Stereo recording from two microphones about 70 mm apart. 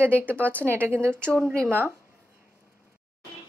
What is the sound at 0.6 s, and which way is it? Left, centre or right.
Speech, right.